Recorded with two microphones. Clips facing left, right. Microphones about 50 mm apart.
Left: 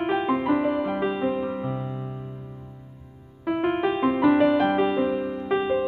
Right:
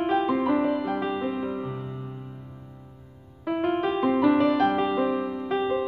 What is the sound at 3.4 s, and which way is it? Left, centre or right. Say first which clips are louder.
Music: left 2 dB; centre.